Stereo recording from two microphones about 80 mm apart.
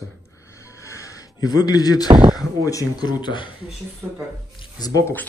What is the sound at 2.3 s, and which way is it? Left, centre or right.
Speech, left.